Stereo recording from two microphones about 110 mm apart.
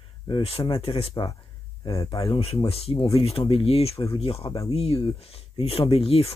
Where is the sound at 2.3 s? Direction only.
60° left (ahead or behind).